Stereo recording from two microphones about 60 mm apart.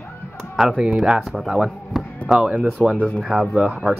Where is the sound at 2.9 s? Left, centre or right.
Centre.